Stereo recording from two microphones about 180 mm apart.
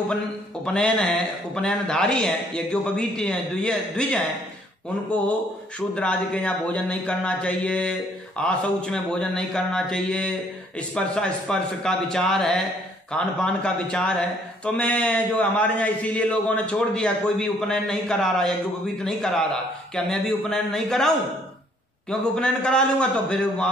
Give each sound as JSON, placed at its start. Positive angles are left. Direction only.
{"t": 0.7, "sound": "a man's voice", "side_deg": 5}
{"t": 5.8, "sound": "a man's voice", "side_deg": 5}
{"t": 22.2, "sound": "a man's voice", "side_deg": 5}